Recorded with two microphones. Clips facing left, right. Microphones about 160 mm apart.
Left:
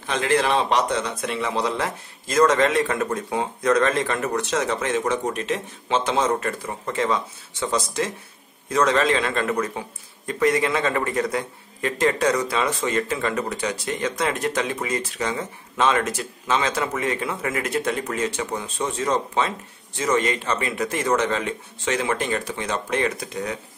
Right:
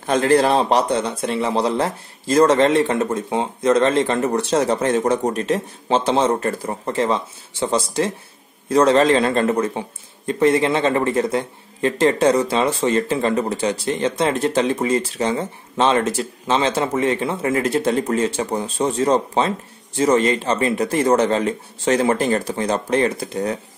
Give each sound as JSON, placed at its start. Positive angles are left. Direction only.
{"t": 0.0, "sound": "speech", "side_deg": -40}